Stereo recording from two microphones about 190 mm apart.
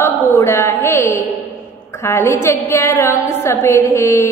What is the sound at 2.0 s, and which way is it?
Mantra, 15° left (ahead or behind).